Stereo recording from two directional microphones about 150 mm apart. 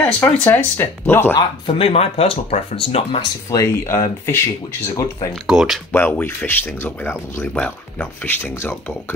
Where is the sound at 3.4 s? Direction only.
20° left (ahead or behind).